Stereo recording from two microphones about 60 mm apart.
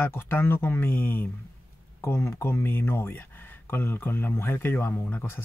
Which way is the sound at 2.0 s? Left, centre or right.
Left.